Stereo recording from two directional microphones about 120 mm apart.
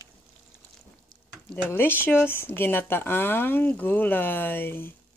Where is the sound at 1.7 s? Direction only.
15° left (ahead or behind).